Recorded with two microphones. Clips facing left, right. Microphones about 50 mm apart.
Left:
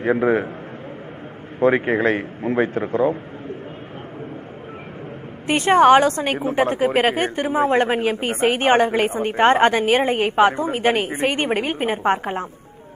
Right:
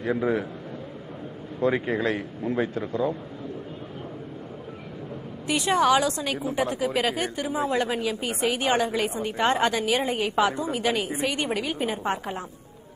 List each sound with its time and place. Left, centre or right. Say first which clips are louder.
0.0 s a woman's voice: left 7 dB; left
1.6 s a woman's voice: left 7 dB; left
5.5 s a woman's voice: left 8 dB; left